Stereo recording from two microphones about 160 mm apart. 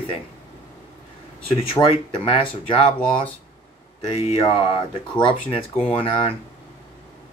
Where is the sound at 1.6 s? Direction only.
30° left (ahead or behind).